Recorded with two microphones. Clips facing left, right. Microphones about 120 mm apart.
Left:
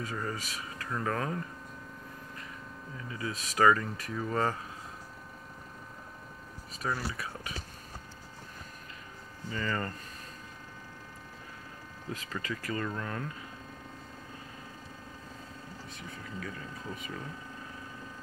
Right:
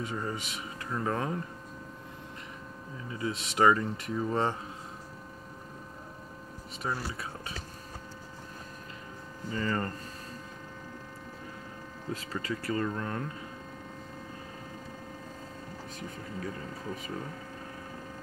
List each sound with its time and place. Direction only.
0.0 s speech: 20° right (ahead or behind)
3.1 s speech: 25° right (ahead or behind)
6.8 s speech: 25° right (ahead or behind)
9.5 s speech: 25° right (ahead or behind)
12.1 s speech: 35° right (ahead or behind)
16.4 s speech: 40° right (ahead or behind)